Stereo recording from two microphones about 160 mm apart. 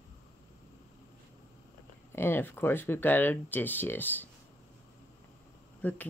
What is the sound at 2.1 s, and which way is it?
Speech, 15° left (ahead or behind).